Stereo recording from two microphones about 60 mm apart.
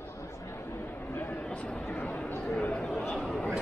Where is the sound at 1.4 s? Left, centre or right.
Centre.